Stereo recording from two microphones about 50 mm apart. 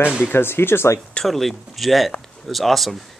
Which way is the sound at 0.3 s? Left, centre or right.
Left.